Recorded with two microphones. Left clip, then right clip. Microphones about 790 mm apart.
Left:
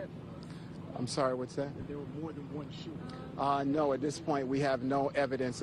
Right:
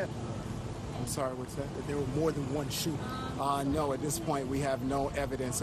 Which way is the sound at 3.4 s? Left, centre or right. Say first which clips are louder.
Left 1 dB; right.